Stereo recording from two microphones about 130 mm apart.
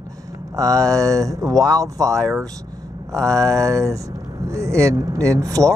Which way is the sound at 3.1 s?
25° right (ahead or behind).